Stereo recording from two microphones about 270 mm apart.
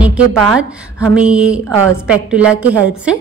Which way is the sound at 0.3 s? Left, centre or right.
Centre.